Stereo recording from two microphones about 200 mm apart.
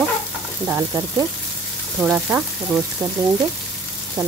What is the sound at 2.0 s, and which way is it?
Speech, 5° right (ahead or behind).